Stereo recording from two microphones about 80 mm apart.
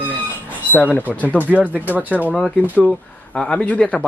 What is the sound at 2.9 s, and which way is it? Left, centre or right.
Speech, centre.